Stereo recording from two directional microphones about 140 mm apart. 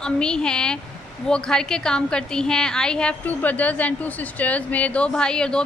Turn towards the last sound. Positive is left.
turn(degrees=5)  # may be behind; listen again after turning